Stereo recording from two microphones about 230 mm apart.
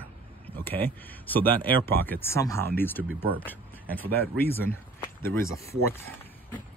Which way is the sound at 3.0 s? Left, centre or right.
Centre.